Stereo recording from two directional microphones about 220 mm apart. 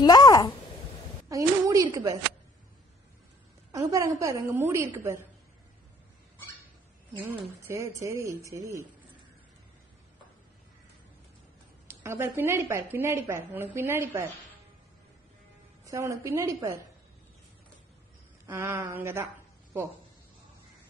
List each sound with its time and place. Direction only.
0.0 s a sound: 15° left (ahead or behind)
1.3 s a woman's voice: 15° right (ahead or behind)
3.7 s a woman's voice: 15° right (ahead or behind)
7.2 s a woman's voice: 10° right (ahead or behind)
11.9 s a woman's voice: 10° right (ahead or behind)
15.8 s a woman's voice: 15° right (ahead or behind)
18.5 s a woman's voice: 10° right (ahead or behind)